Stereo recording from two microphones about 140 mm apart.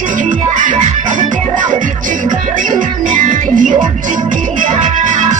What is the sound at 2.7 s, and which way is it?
Music, 65° right (ahead or behind).